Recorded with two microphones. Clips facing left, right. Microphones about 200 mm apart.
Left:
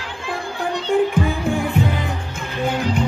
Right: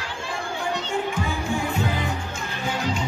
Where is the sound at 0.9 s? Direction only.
55° left (ahead or behind).